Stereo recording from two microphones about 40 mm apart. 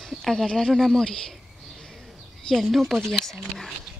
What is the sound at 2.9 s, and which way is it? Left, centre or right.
Speech, centre.